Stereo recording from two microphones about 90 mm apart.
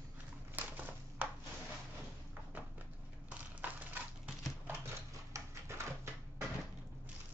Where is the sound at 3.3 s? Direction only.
15° right (ahead or behind).